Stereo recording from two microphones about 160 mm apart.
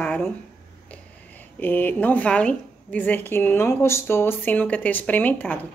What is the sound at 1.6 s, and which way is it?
A woman's voice, 10° left (ahead or behind).